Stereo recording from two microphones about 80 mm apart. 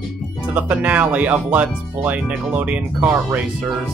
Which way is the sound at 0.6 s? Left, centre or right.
Centre.